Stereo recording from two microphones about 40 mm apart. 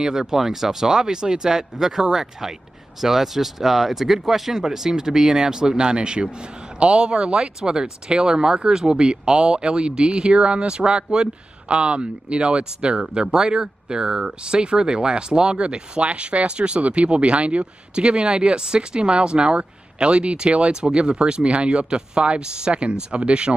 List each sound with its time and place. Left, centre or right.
0.0 s speech: centre